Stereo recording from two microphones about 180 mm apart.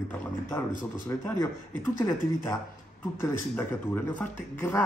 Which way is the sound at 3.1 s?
15° left (ahead or behind).